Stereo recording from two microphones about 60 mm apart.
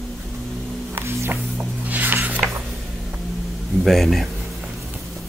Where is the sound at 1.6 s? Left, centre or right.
Right.